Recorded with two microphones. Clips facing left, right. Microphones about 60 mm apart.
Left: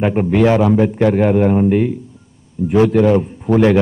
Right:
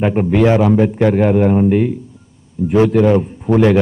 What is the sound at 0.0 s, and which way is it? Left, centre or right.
A man's voice, centre.